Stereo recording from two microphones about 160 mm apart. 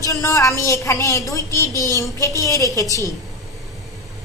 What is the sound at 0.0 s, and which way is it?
A woman's voice, 20° left (ahead or behind).